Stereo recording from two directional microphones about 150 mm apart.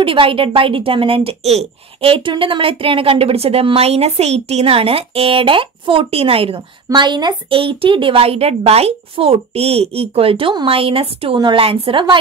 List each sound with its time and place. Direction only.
0.0 s speech: 35° right (ahead or behind)